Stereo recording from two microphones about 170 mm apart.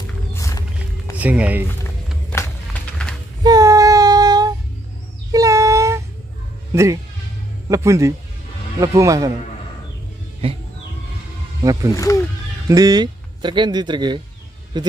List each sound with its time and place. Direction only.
0.3 s music: 20° left (ahead or behind)
1.1 s music: 10° right (ahead or behind)
2.3 s music: 5° left (ahead or behind)
3.4 s child singing: 20° right (ahead or behind)
5.3 s a sound: 20° right (ahead or behind)
6.7 s speech: 15° right (ahead or behind)
10.4 s a sound: 35° right (ahead or behind)
11.6 s speech: 20° right (ahead or behind)
11.9 s speech: 20° left (ahead or behind)
12.6 s speech: 20° right (ahead or behind)